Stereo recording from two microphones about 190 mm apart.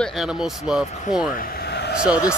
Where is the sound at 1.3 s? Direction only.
55° left (ahead or behind).